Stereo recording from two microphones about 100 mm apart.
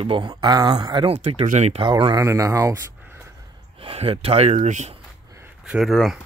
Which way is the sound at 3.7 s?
75° right (ahead or behind).